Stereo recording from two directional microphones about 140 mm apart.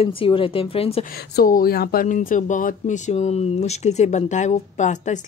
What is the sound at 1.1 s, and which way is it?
Speech, 85° left.